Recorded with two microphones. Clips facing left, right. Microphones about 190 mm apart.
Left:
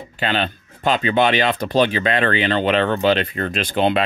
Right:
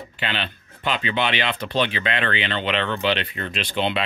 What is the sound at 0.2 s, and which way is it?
Speech, 40° left (ahead or behind).